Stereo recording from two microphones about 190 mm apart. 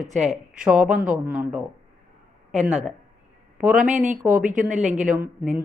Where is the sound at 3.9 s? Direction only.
40° right (ahead or behind).